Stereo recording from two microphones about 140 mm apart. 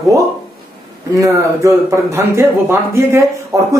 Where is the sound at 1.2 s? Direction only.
20° right (ahead or behind).